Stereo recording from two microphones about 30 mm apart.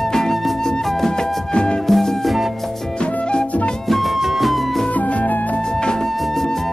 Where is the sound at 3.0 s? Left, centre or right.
Left.